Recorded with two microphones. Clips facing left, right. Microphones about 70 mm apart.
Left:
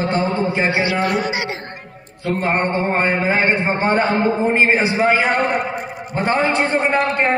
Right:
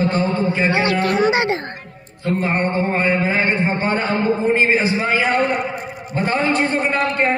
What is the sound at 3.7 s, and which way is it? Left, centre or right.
A man's voice, left.